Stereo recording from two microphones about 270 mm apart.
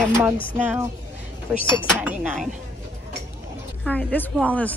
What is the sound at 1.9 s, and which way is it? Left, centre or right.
Speech, centre.